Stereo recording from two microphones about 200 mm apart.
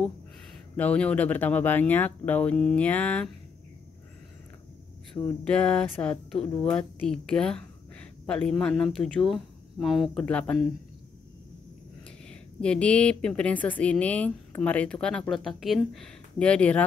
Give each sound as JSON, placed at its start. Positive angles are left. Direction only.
{"t": 0.7, "sound": "speech", "side_deg": 5}
{"t": 5.1, "sound": "a woman's voice", "side_deg": 5}
{"t": 12.3, "sound": "a woman's voice", "side_deg": 5}